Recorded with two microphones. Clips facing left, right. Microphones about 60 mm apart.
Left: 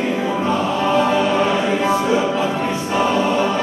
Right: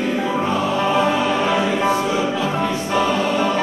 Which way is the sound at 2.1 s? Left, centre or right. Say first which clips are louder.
Left 2 dB; left.